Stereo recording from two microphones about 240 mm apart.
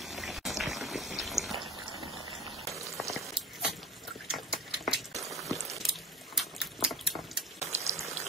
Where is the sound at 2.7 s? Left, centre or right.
Centre.